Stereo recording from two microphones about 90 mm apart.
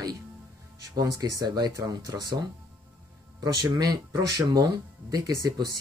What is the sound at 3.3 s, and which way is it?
Speech, 45° right (ahead or behind).